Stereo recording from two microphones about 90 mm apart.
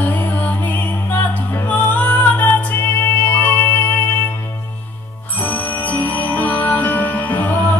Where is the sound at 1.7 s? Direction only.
20° left (ahead or behind).